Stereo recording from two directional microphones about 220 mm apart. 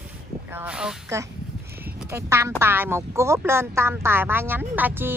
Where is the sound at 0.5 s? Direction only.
5° right (ahead or behind).